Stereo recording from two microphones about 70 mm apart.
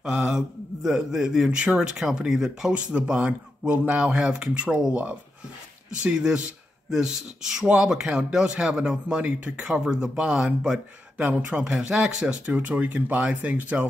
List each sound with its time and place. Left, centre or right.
0.0 s speech: centre
2.7 s speech: centre